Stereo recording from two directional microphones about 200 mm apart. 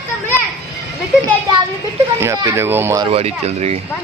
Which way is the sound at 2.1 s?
15° right (ahead or behind).